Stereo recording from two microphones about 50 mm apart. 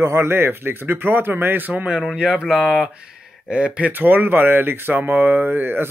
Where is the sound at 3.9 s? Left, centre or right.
Right.